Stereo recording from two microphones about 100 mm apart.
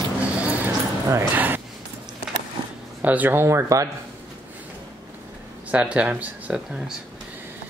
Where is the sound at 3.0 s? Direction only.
15° right (ahead or behind).